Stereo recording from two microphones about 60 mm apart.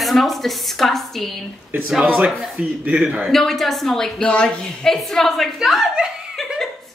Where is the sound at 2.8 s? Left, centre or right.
Centre.